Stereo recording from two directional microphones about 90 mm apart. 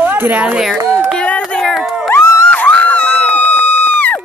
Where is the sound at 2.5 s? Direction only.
15° left (ahead or behind).